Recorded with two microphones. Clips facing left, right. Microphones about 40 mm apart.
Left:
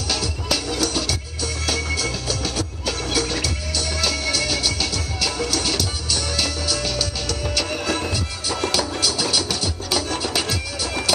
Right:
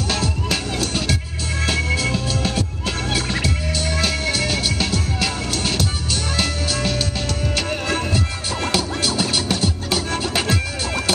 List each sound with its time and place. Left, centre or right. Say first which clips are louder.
0.1 s music: even; right
8.1 s music: right 2 dB; right